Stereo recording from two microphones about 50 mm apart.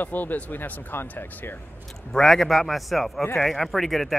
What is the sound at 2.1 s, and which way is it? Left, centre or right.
Speech, centre.